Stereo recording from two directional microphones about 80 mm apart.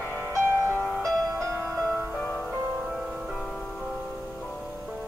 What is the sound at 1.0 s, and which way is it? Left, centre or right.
Music, centre.